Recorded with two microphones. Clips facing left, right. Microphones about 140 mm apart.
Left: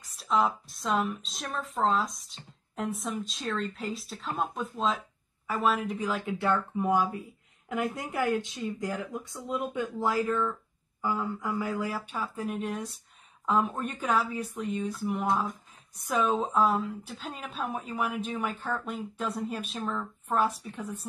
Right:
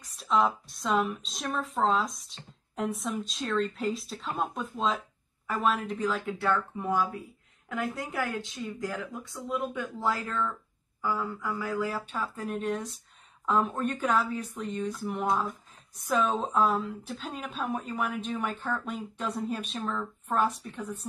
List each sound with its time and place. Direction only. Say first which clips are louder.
0.0 s a woman's voice: right 1 dB; centre (ahead or behind)